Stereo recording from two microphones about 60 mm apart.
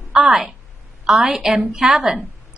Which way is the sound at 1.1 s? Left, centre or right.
Centre.